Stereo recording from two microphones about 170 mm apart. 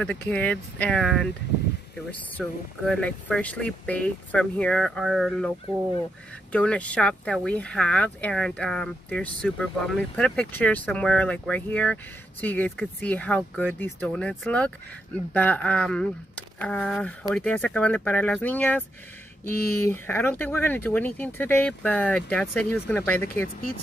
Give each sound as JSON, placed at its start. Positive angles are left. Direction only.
{"t": 0.0, "sound": "speech", "side_deg": 5}
{"t": 2.4, "sound": "speech", "side_deg": 0}
{"t": 6.5, "sound": "speech", "side_deg": 5}
{"t": 19.9, "sound": "speech", "side_deg": 10}